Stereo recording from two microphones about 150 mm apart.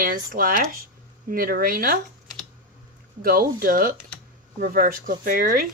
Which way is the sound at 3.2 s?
75° right (ahead or behind).